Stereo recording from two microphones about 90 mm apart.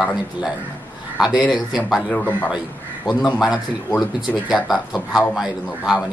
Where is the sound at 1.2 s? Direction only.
5° right (ahead or behind).